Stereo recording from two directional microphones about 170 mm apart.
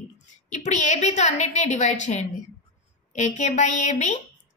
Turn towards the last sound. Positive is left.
turn(degrees=45)  # may be behind; listen again after turning